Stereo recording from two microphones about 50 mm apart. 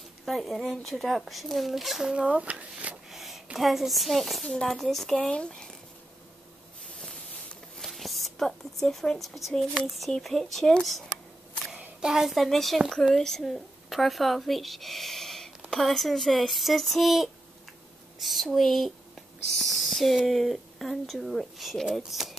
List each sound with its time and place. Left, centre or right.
0.2 s speech: centre
2.0 s speech: centre
3.1 s a sound: centre
3.5 s speech: centre
5.1 s speech: centre
7.0 s a sound: centre
7.8 s a sound: centre
8.8 s speech: centre
12.0 s speech: centre